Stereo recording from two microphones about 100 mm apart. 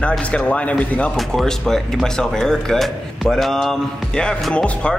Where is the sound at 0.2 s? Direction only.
10° left (ahead or behind).